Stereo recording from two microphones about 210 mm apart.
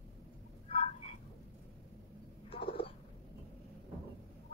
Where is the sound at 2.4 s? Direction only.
25° left (ahead or behind).